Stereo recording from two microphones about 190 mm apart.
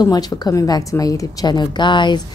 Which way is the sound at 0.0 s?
20° left (ahead or behind).